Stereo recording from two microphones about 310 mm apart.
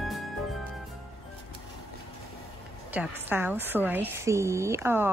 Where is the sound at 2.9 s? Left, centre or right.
Centre.